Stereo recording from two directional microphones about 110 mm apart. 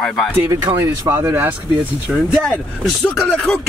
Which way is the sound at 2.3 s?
5° left (ahead or behind).